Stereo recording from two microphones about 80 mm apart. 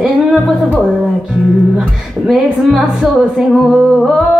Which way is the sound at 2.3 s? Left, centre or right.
Centre.